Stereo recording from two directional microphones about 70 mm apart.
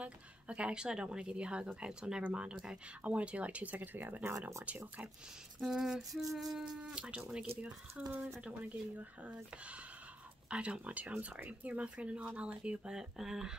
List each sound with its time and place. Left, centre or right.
0.0 s speech: centre
5.6 s a sound: centre
6.9 s speech: centre
8.1 s speech: right
10.5 s speech: centre